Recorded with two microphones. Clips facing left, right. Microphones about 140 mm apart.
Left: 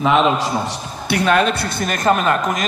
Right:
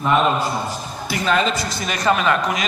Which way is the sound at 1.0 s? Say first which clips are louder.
Left 4 dB; 60° left (ahead or behind).